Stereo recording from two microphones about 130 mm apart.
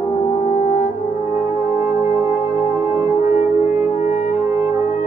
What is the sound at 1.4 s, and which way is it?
Music, 20° right (ahead or behind).